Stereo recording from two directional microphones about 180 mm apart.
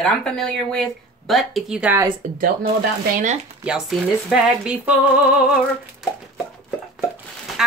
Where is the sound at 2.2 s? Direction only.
40° right (ahead or behind).